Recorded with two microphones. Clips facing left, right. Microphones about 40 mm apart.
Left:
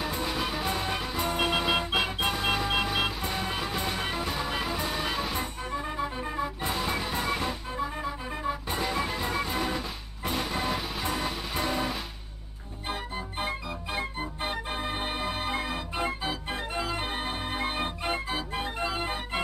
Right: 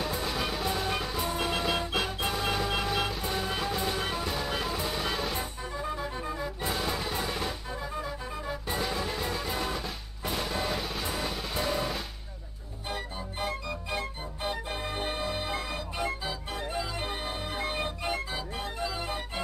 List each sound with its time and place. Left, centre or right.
0.0 s music: centre
2.3 s music: centre
5.8 s music: left
6.7 s music: centre
12.8 s organ: left
18.8 s music: left